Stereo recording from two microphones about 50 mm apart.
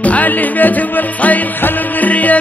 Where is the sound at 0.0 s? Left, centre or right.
Left.